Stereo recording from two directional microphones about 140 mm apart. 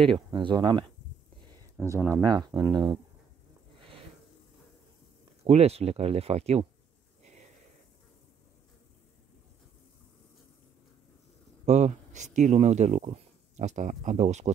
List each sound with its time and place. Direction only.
0.0 s speech: 35° right (ahead or behind)
1.8 s speech: 20° right (ahead or behind)
2.2 s speech: 30° right (ahead or behind)
5.4 s speech: 50° right (ahead or behind)
11.6 s speech: 55° right (ahead or behind)